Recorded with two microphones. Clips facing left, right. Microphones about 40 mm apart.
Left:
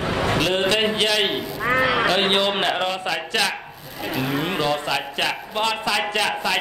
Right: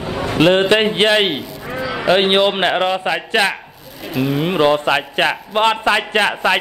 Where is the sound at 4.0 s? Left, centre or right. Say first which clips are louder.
Right 5 dB; centre.